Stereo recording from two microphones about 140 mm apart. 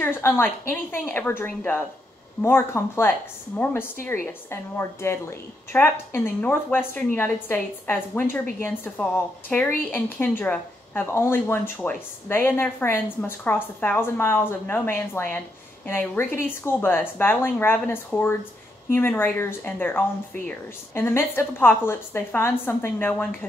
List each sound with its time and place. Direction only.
0.0 s speech: 15° left (ahead or behind)